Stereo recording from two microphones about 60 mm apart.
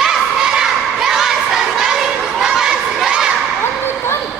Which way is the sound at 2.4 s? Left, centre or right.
Centre.